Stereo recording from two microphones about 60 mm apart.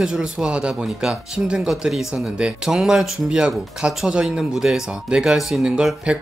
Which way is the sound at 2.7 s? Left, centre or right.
Centre.